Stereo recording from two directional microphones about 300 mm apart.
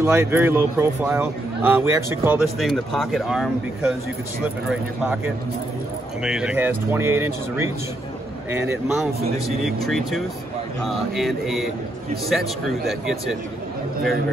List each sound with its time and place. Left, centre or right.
0.0 s a man's voice: centre